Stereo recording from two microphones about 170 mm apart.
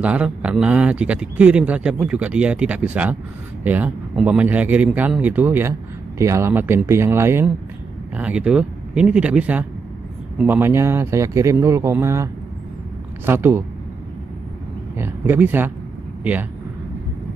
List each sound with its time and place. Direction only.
0.0 s a man's voice: 5° right (ahead or behind)
15.0 s a man's voice: 15° right (ahead or behind)